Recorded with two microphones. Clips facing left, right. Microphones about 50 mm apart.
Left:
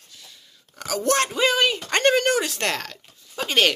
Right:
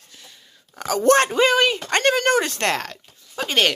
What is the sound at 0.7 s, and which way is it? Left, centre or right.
A woman's voice, centre.